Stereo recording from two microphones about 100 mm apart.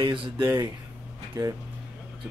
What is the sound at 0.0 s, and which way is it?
Speech, 55° right (ahead or behind).